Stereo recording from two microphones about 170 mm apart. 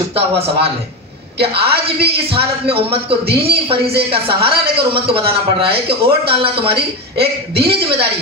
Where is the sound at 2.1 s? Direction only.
35° right (ahead or behind).